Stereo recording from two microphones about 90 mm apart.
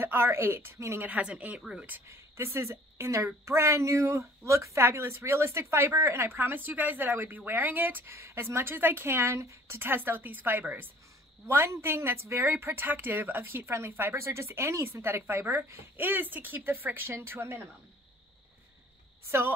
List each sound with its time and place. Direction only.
0.0 s a woman's voice: 25° right (ahead or behind)
1.0 s speech: 15° right (ahead or behind)
2.3 s a woman's voice: 30° right (ahead or behind)
19.2 s a woman's voice: 25° right (ahead or behind)